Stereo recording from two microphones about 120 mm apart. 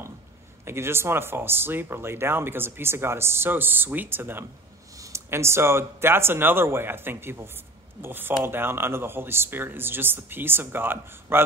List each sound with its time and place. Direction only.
0.7 s speech: 20° right (ahead or behind)